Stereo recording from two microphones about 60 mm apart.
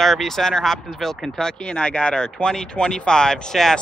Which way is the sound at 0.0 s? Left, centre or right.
Centre.